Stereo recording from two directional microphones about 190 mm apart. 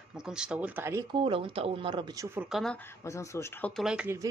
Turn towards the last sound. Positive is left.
turn(degrees=-5)  # may be behind; listen again after turning